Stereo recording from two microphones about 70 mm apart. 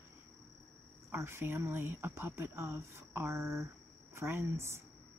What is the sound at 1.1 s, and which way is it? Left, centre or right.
Speech, right.